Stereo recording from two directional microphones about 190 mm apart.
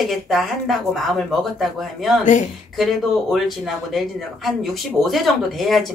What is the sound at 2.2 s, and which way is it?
Speech, 40° left (ahead or behind).